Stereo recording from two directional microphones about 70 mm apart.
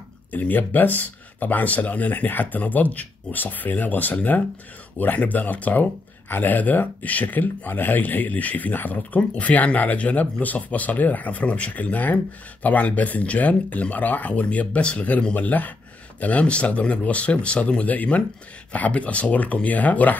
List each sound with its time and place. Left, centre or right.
0.3 s speech: left